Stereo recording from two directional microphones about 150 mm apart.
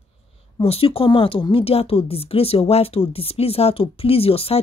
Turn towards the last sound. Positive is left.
turn(degrees=40)  # may be behind; listen again after turning